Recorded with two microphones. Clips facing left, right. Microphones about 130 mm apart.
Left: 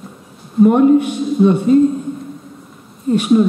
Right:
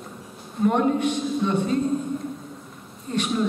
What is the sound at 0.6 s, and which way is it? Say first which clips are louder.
Speech: left 10 dB; 10° left (ahead or behind).